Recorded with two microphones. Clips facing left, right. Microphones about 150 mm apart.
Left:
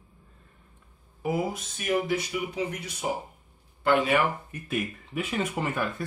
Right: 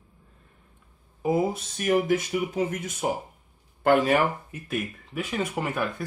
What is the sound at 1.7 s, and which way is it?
Speech, 50° right (ahead or behind).